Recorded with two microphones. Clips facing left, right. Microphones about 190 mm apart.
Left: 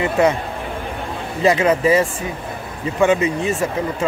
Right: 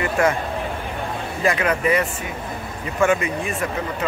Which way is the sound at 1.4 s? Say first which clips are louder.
Left 5 dB; 25° left (ahead or behind).